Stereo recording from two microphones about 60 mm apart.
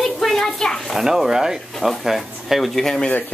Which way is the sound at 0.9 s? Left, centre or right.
Centre.